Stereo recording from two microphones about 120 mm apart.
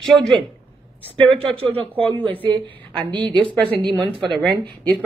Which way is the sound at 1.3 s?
45° right (ahead or behind).